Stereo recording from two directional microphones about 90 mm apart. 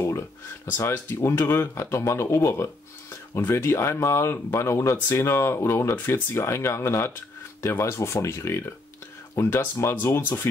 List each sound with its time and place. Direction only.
0.7 s speech: 25° left (ahead or behind)